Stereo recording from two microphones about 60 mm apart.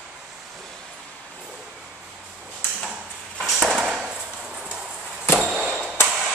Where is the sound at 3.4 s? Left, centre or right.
Centre.